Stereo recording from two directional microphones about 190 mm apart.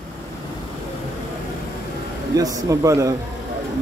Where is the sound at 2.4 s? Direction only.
20° right (ahead or behind).